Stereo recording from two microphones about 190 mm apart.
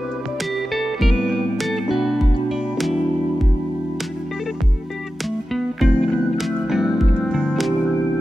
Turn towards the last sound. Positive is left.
turn(degrees=5)  # may be behind; listen again after turning